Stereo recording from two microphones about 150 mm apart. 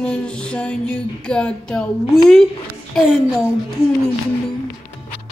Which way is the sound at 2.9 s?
Centre (ahead or behind).